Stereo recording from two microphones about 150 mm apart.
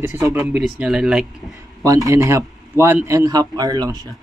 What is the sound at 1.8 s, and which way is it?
A man's voice, 20° right (ahead or behind).